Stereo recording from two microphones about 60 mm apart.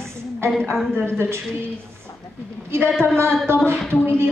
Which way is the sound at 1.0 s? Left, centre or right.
Right.